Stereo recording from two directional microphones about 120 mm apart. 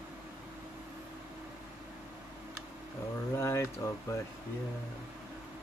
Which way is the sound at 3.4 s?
25° left (ahead or behind).